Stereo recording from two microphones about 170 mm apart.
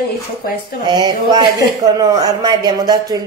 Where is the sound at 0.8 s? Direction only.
25° right (ahead or behind).